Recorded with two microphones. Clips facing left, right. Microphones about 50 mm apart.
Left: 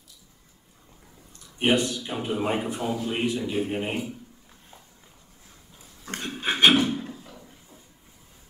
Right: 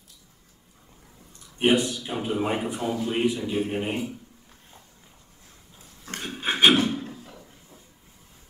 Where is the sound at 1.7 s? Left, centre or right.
Centre.